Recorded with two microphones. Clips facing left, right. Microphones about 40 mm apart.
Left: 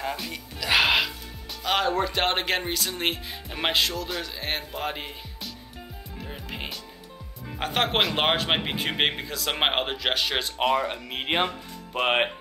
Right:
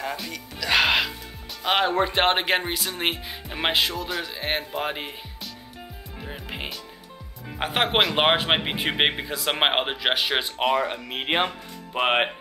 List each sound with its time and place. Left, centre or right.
0.0 s speech: centre
0.7 s music: centre
1.6 s speech: right
6.2 s music: centre
7.5 s speech: centre
10.6 s speech: centre